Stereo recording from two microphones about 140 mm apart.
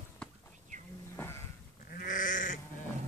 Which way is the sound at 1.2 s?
20° left (ahead or behind).